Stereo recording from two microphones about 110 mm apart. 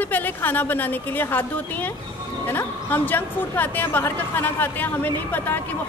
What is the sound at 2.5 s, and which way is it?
A woman's voice, 20° left (ahead or behind).